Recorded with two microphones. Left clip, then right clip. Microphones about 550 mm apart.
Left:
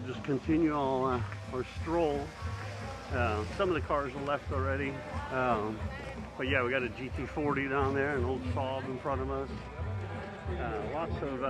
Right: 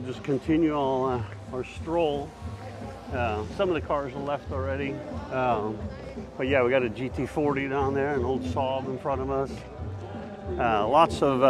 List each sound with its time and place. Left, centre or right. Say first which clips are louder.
0.5 s speech: right 5 dB; centre
3.2 s speech: right 4 dB; centre
10.6 s speech: right 16 dB; right